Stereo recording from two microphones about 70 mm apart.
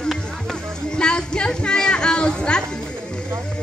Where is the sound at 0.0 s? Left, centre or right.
Centre.